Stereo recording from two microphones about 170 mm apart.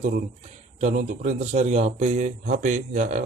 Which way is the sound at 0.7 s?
45° right (ahead or behind).